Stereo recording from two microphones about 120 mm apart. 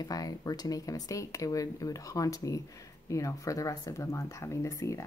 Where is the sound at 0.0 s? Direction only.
30° left (ahead or behind).